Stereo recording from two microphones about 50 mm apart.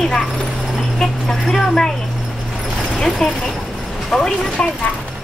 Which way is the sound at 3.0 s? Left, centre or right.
Centre.